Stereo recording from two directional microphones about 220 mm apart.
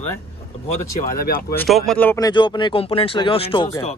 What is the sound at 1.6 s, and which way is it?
Speech, centre (ahead or behind).